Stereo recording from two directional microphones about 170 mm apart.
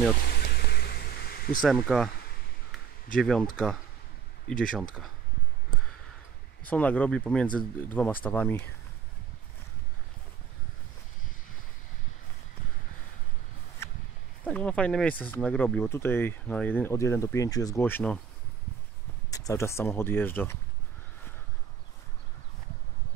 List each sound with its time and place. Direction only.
0.3 s vehicle: 70° left (ahead or behind)
1.9 s speech: 5° right (ahead or behind)
3.2 s speech: 5° left (ahead or behind)
4.5 s speech: 5° left (ahead or behind)
6.6 s speech: 10° left (ahead or behind)
14.4 s speech: 10° left (ahead or behind)
19.3 s speech: 20° left (ahead or behind)